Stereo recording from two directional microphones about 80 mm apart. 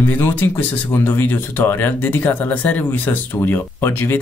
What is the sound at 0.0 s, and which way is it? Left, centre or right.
Speech, left.